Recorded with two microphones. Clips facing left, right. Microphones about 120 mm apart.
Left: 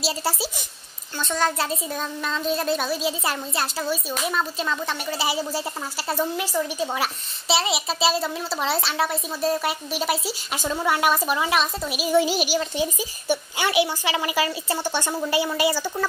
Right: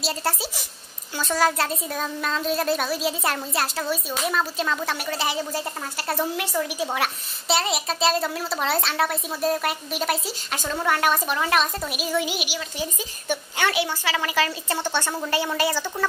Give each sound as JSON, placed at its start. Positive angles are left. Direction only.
{"t": 0.0, "sound": "a woman's voice", "side_deg": 5}
{"t": 1.1, "sound": "a woman's voice", "side_deg": -5}
{"t": 12.2, "sound": "speech", "side_deg": 35}
{"t": 13.3, "sound": "a woman's voice", "side_deg": 10}